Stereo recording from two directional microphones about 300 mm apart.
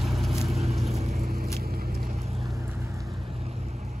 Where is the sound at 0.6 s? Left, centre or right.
Right.